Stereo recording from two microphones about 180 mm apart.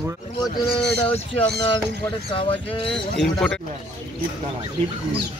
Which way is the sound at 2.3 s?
30° left (ahead or behind).